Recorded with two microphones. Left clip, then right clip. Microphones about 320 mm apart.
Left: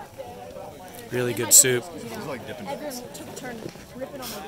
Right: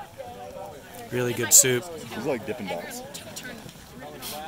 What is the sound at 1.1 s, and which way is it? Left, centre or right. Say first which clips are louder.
Speech: left 1 dB; centre.